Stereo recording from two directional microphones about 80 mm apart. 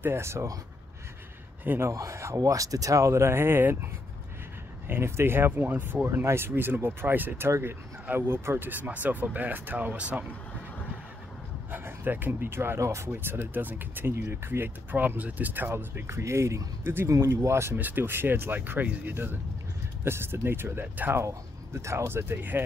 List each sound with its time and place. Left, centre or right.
0.0 s speech: right
1.6 s a man's voice: right
1.9 s speech: right
4.8 s speech: right
11.7 s speech: right
17.7 s speech: right
21.2 s speech: right